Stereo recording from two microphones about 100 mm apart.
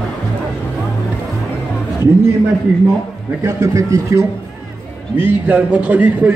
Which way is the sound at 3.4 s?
30° right (ahead or behind).